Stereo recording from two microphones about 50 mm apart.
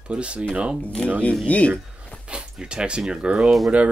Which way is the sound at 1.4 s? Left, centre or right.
Left.